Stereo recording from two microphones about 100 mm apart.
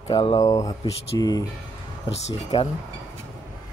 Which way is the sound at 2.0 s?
80° left.